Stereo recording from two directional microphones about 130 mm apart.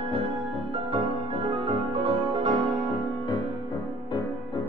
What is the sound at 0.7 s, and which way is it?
Music, 40° right (ahead or behind).